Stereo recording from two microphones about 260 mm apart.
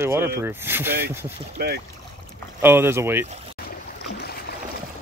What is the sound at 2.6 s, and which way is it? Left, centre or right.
Speech, centre.